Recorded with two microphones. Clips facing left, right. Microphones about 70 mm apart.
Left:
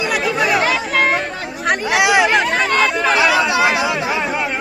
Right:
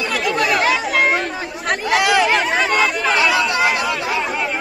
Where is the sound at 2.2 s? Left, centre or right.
Centre.